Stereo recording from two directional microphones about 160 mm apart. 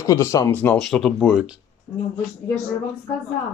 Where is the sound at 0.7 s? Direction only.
Centre (ahead or behind).